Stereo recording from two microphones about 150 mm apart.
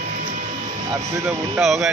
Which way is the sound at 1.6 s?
Centre (ahead or behind).